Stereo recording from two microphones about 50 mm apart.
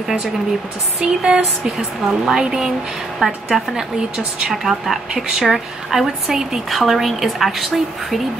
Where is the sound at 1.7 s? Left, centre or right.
Centre.